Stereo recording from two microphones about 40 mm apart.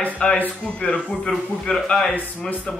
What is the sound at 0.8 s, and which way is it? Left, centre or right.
A man's voice, left.